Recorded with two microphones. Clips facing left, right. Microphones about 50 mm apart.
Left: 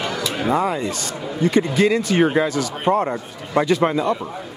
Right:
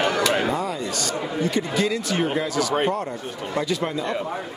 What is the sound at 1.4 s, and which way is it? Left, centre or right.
Speech, left.